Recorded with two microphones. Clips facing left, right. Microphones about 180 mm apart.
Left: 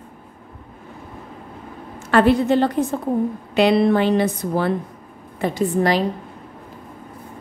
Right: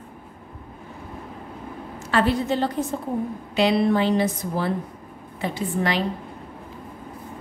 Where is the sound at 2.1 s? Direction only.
55° left (ahead or behind).